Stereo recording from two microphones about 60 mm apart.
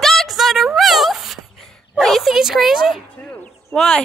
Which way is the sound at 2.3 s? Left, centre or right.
Centre.